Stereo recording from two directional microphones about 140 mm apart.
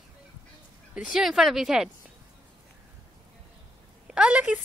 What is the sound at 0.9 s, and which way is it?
Speech, 5° right (ahead or behind).